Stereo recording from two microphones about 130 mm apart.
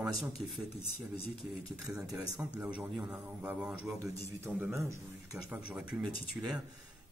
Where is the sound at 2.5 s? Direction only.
10° right (ahead or behind).